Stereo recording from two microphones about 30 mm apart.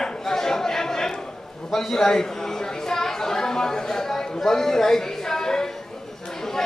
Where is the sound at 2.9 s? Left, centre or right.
Centre.